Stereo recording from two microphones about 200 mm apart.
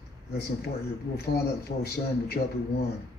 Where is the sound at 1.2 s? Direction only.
50° left (ahead or behind).